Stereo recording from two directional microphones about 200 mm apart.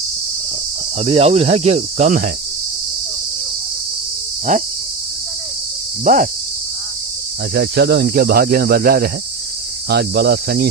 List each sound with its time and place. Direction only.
0.9 s speech: 30° right (ahead or behind)
6.1 s speech: 40° right (ahead or behind)
7.5 s cricket: 55° right (ahead or behind)